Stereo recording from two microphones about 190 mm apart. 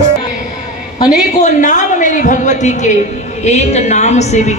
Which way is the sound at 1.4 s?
40° left (ahead or behind).